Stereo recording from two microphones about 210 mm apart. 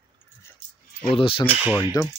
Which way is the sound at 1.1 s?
25° left (ahead or behind).